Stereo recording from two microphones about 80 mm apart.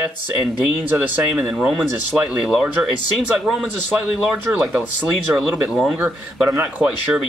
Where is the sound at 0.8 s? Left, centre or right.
Right.